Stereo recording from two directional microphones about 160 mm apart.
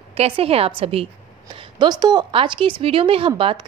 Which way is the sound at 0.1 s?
40° right (ahead or behind).